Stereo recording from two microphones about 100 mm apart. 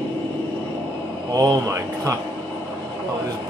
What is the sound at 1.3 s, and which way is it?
Speech, 30° right (ahead or behind).